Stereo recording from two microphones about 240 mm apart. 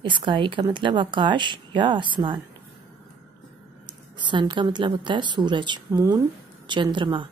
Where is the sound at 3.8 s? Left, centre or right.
Centre.